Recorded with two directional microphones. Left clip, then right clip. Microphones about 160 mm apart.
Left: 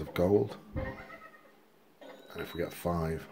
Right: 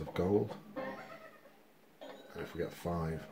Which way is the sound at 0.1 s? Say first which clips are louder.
Left 5 dB; 40° left (ahead or behind).